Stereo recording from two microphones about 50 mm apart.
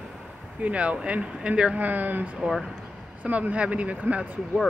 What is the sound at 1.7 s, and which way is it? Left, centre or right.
Speech, right.